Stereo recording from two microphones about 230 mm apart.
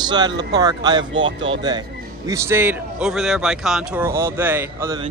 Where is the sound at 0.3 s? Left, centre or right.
Right.